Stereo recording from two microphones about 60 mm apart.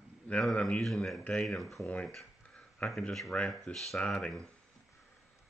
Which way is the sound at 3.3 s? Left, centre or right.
Left.